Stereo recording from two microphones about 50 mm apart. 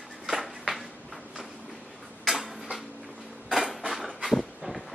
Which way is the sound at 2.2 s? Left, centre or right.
Centre.